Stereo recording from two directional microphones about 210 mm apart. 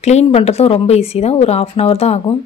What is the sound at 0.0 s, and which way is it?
Speech, 30° left (ahead or behind).